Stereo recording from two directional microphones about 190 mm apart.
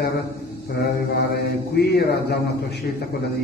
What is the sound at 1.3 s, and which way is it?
Mantra, 60° left (ahead or behind).